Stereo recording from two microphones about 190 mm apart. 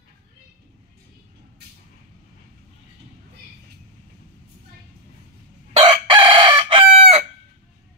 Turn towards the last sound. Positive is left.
turn(degrees=-30)  # may be behind; listen again after turning